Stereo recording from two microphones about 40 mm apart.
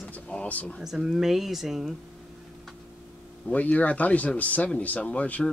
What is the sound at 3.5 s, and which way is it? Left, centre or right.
Speech, left.